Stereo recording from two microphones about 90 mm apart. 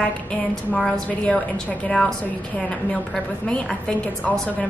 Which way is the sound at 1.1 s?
15° left (ahead or behind).